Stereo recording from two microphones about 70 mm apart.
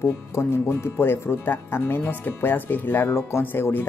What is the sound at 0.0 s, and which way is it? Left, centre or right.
Speech, left.